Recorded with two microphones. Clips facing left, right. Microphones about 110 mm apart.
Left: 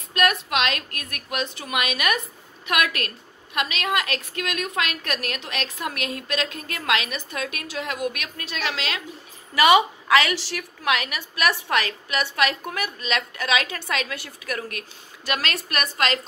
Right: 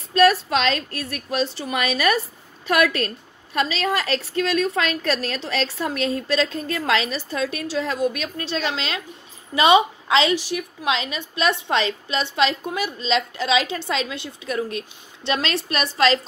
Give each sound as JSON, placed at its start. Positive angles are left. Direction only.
{"t": 0.1, "sound": "a woman's voice", "side_deg": -30}